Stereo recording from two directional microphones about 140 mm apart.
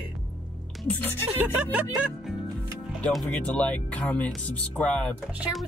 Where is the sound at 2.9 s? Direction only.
10° left (ahead or behind).